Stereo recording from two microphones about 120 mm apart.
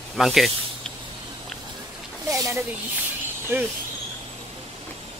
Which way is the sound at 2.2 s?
25° right (ahead or behind).